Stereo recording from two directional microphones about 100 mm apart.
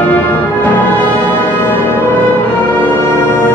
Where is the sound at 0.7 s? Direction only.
20° left (ahead or behind).